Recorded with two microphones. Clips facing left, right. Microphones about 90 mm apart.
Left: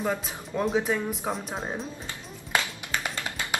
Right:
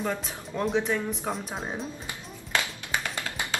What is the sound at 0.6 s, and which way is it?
Speech, 5° left (ahead or behind).